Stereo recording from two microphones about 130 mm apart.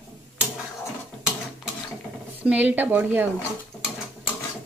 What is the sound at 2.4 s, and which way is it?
A woman's voice, 10° right (ahead or behind).